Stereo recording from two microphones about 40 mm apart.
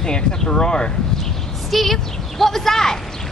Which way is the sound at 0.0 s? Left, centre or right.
Centre.